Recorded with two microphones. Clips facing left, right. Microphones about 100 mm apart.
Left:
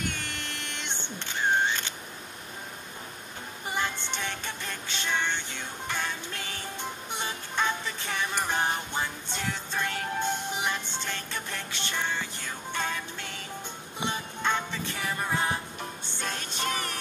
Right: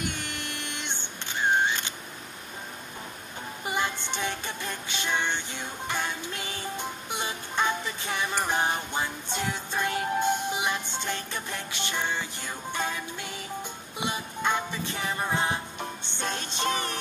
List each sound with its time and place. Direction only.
0.1 s a sound: 15° right (ahead or behind)
3.6 s music: 15° right (ahead or behind)
15.0 s music: 25° right (ahead or behind)